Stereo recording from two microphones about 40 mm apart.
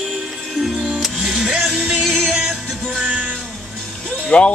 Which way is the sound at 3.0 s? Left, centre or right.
Right.